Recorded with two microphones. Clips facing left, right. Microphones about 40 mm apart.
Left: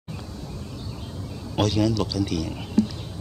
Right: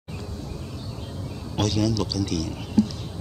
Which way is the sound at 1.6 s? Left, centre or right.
Centre.